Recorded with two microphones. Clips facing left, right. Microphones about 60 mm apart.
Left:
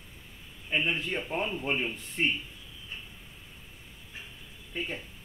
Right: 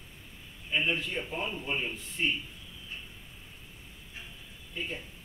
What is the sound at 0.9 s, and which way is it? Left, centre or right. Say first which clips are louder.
A man's voice: left 3 dB; left.